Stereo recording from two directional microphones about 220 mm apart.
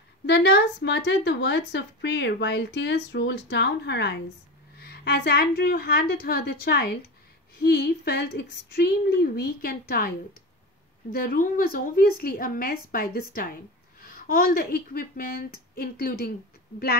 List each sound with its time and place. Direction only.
0.3 s a woman's voice: 50° left (ahead or behind)